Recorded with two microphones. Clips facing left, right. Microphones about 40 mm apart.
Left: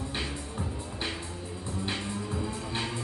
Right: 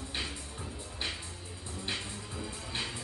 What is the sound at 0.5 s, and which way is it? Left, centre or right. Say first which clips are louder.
Music: left 7 dB; left.